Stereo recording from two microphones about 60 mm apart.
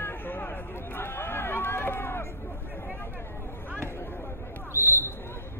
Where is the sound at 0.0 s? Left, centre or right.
Left.